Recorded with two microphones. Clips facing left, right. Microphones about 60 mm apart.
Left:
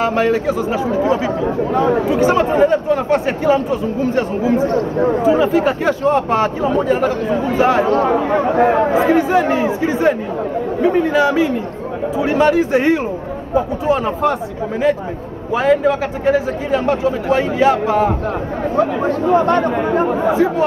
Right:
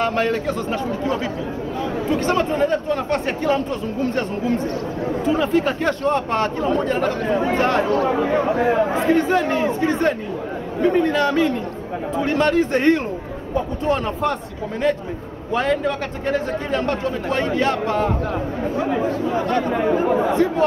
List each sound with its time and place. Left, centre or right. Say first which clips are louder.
0.0 s a man's voice: left 5 dB; centre
1.8 s speech: left 10 dB; left
2.0 s a man's voice: left 5 dB; centre
7.8 s speech: left 4 dB; left
8.9 s a man's voice: left 4 dB; centre
15.5 s a man's voice: left 6 dB; centre
19.0 s speech: left 7 dB; left
20.1 s a man's voice: left 3 dB; centre